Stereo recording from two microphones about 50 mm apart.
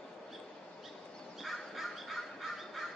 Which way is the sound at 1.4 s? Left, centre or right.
Centre.